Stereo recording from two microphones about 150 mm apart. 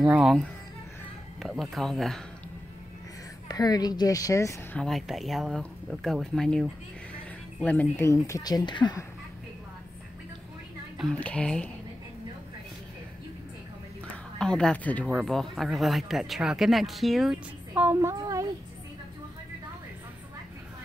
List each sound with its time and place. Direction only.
0.1 s speech: centre (ahead or behind)
3.4 s a woman's voice: 25° left (ahead or behind)
4.7 s a woman's voice: centre (ahead or behind); by 9.0 s 30° left (ahead or behind)
11.0 s speech: 5° left (ahead or behind)
14.4 s speech: 5° left (ahead or behind)
15.0 s speech: centre (ahead or behind); by 18.5 s 20° right (ahead or behind)